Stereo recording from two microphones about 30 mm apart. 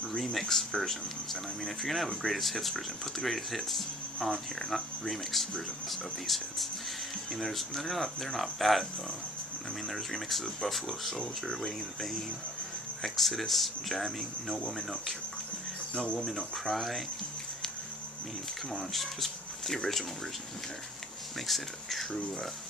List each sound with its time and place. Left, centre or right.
0.1 s speech: centre
9.8 s speech: centre
11.1 s speech: centre
13.0 s speech: centre
16.3 s speech: centre
16.7 s speech: centre
18.7 s speech: centre
21.5 s speech: centre